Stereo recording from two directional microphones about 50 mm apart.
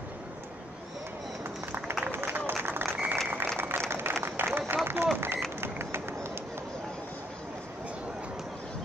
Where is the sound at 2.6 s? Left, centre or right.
Right.